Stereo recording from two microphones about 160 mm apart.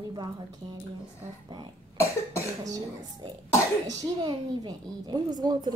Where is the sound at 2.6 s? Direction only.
20° right (ahead or behind).